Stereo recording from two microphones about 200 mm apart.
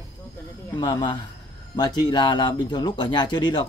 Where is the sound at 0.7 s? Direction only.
20° left (ahead or behind).